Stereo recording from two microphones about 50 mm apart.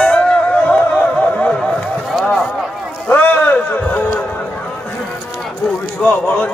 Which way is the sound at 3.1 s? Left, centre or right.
Left.